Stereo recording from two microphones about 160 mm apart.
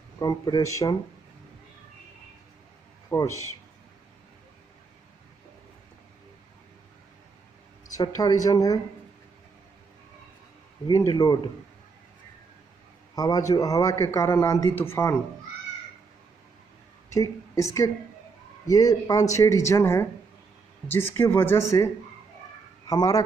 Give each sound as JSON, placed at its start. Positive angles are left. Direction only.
{"t": 0.2, "sound": "a man's voice", "side_deg": 25}
{"t": 3.1, "sound": "speech", "side_deg": 20}
{"t": 7.9, "sound": "a man's voice", "side_deg": 25}
{"t": 10.9, "sound": "a man's voice", "side_deg": 20}
{"t": 13.1, "sound": "a man's voice", "side_deg": 25}
{"t": 17.1, "sound": "a woman's voice", "side_deg": 20}
{"t": 18.7, "sound": "a man's voice", "side_deg": 20}